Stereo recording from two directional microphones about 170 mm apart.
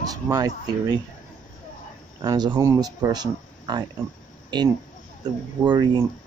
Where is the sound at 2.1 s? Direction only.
25° right (ahead or behind).